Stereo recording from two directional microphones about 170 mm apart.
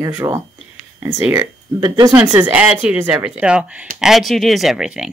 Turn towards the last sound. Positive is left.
turn(degrees=-5)  # may be behind; listen again after turning